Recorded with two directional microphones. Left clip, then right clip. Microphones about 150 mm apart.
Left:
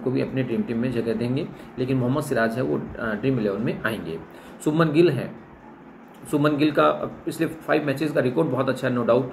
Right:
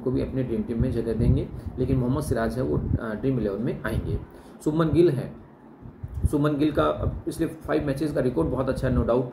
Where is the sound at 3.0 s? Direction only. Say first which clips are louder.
Left 3 dB; 10° right (ahead or behind).